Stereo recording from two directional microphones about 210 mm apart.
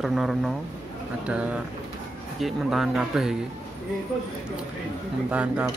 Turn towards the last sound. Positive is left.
turn(degrees=-5)  # may be behind; listen again after turning